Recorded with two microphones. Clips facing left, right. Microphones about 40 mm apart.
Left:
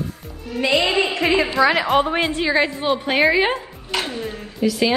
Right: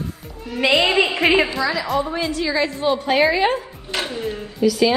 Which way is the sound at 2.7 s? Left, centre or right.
Centre.